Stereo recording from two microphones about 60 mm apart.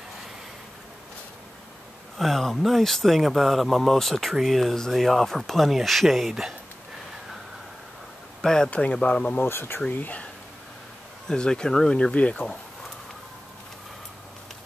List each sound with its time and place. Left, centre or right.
2.1 s speech: centre
8.4 s speech: centre
8.6 s speech: left
9.4 s speech: left
11.2 s speech: centre